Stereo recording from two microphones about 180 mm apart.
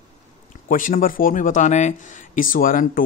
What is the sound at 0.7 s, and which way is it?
Speech, 50° left (ahead or behind).